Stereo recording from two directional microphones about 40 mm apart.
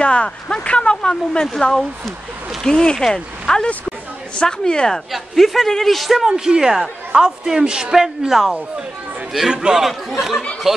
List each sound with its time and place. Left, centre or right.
0.0 s speech: left
1.6 s speech: centre
5.1 s a man's voice: centre
6.1 s a woman's voice: centre
9.8 s a man's voice: centre